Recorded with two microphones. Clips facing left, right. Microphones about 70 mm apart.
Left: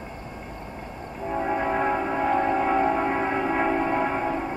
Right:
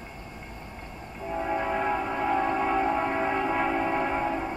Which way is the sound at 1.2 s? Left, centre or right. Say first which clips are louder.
Left 3 dB; centre.